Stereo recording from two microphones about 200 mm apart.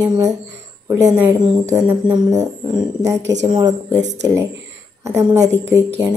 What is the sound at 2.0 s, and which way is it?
A woman's voice, 20° right (ahead or behind).